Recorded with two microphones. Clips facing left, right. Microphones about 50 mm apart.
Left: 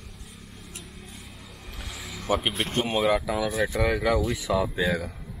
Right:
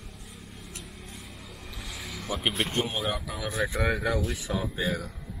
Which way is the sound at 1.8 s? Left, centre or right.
Centre.